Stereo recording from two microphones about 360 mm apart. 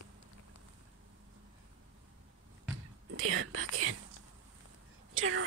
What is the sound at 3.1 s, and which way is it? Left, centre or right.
Whispering, right.